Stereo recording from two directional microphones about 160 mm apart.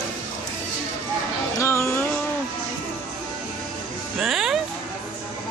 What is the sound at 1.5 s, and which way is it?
Music, 15° left (ahead or behind).